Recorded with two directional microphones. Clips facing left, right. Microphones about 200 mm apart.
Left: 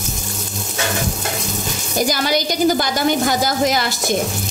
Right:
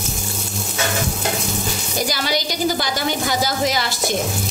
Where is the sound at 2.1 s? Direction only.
50° left (ahead or behind).